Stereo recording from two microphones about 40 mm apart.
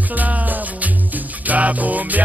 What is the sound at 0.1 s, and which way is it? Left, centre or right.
Music, right.